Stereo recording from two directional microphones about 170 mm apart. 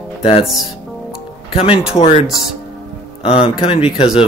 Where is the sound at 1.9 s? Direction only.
35° left (ahead or behind).